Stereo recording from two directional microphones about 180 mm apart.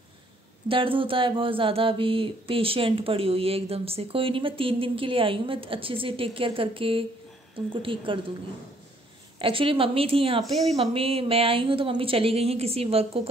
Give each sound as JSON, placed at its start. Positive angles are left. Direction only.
{"t": 0.7, "sound": "a sound", "side_deg": -30}
{"t": 9.4, "sound": "a woman's voice", "side_deg": -30}
{"t": 10.4, "sound": "speech", "side_deg": 0}
{"t": 10.8, "sound": "a woman's voice", "side_deg": -30}